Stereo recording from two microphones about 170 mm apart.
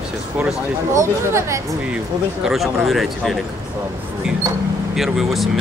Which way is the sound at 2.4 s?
Centre (ahead or behind).